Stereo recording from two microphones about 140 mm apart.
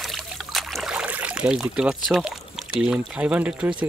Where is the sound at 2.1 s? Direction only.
Centre (ahead or behind).